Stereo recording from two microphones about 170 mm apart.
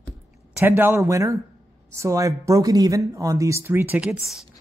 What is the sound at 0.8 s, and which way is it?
Speech, 15° right (ahead or behind).